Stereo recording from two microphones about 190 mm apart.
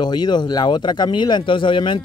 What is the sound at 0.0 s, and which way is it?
Speech, 20° left (ahead or behind).